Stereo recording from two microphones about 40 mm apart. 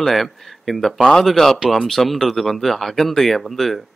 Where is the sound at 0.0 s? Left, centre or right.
Centre.